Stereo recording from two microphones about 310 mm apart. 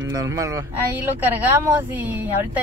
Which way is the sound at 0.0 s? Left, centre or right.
Centre.